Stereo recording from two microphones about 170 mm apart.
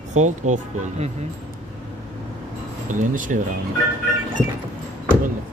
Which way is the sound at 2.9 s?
50° right (ahead or behind).